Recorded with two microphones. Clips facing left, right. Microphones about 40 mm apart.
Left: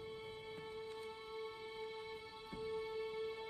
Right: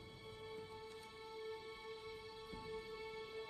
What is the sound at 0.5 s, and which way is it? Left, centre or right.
Music, left.